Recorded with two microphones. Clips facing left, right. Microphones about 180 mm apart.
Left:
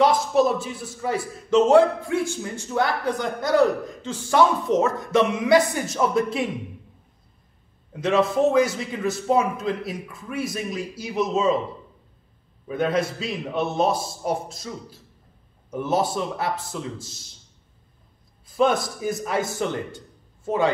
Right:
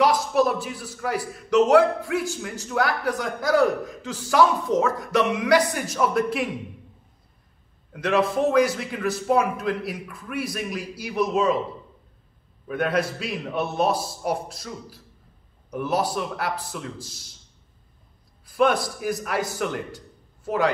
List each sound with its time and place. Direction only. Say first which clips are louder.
0.0 s a man's voice: left 1 dB; 25° left (ahead or behind)
7.9 s a man's voice: left 1 dB; 25° left (ahead or behind)
13.2 s a man's voice: left 1 dB; 25° left (ahead or behind)
18.6 s a man's voice: even; 25° left (ahead or behind)